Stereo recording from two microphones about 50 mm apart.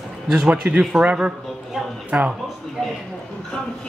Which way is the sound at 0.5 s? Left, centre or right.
Right.